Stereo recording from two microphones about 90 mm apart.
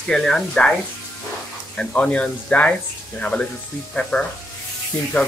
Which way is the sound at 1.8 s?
15° left (ahead or behind).